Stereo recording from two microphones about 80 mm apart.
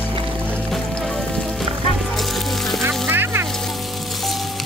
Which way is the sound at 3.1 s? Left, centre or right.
Right.